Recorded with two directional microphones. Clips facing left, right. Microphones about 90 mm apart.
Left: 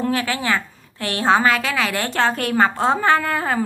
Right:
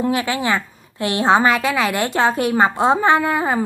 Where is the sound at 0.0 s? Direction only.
20° right (ahead or behind).